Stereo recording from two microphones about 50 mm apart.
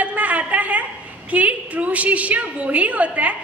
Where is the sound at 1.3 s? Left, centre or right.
Right.